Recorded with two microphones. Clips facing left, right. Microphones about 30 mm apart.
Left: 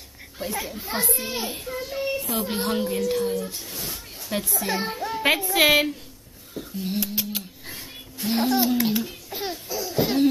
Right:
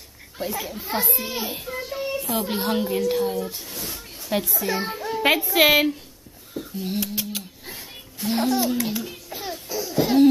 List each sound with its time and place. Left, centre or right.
0.4 s speech: centre
6.5 s a sound: centre
7.6 s music: centre
8.7 s a child's voice: left
9.3 s a sound: left
9.9 s laughter: centre